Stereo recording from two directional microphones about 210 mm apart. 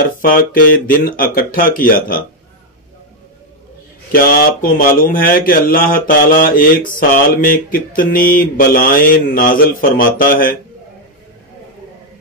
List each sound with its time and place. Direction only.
0.2 s mantra: 40° left (ahead or behind)
4.1 s speech: 45° left (ahead or behind)
7.0 s mantra: 40° left (ahead or behind)